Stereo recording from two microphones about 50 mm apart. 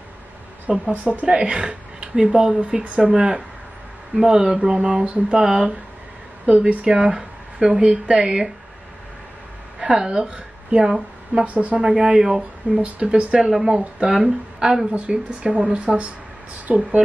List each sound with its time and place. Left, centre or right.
0.7 s speech: right
9.8 s a sound: centre
10.0 s speech: right
11.4 s speech: right; by 13.7 s centre
13.7 s speech: right